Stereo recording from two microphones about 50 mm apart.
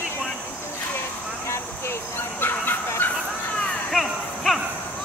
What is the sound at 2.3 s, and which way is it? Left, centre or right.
Dog, left.